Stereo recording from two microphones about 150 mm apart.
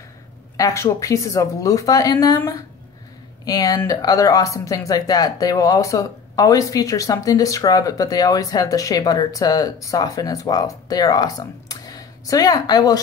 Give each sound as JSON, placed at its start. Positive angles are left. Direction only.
{"t": 0.6, "sound": "speech", "side_deg": 25}